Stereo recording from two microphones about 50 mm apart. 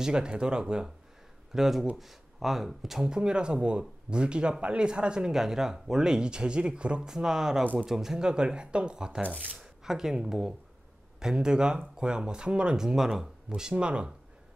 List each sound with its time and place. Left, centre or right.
0.0 s speech: centre
1.5 s speech: centre